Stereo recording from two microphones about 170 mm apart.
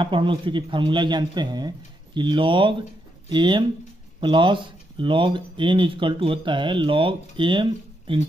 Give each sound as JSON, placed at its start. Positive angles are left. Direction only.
{"t": 0.0, "sound": "speech", "side_deg": -30}